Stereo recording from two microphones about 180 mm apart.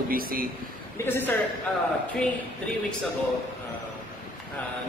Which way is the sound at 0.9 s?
10° left (ahead or behind).